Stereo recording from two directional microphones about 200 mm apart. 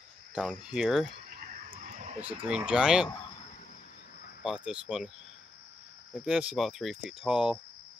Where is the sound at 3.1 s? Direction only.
25° left (ahead or behind).